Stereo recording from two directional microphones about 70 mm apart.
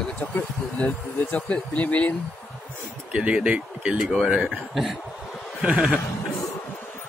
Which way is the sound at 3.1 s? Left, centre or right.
Centre.